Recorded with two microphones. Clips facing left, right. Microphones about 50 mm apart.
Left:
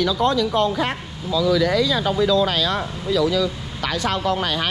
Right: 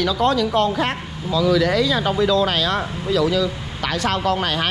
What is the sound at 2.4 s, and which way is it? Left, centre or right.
Speech, right.